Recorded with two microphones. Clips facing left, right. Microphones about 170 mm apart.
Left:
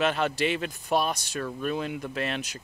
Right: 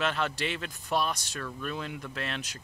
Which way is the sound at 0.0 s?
15° left (ahead or behind).